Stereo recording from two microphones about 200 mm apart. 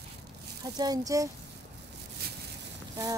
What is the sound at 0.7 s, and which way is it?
Speech, 15° right (ahead or behind).